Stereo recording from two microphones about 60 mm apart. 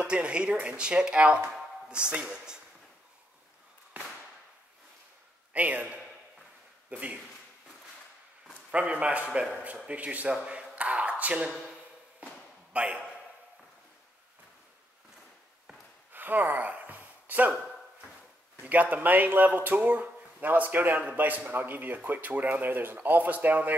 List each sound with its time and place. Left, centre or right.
0.0 s speech: centre
5.5 s a man's voice: right
8.7 s speech: right
10.3 s a sound: centre
12.7 s a man's voice: right
16.1 s gasp: right
18.6 s speech: right